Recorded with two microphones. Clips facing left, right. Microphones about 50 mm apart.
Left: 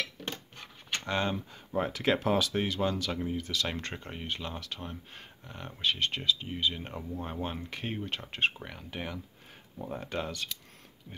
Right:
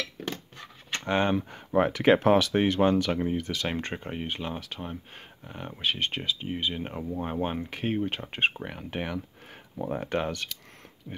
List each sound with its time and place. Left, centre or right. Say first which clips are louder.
1.0 s speech: right 6 dB; right
1.3 s speech: right 8 dB; right
3.6 s speech: right 5 dB; right
9.8 s speech: right 6 dB; right